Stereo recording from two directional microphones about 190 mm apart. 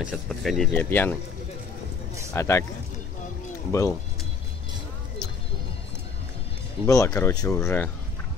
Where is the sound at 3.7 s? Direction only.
15° left (ahead or behind).